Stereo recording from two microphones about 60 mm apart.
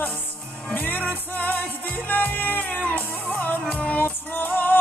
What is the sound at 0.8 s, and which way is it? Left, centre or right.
Music, left.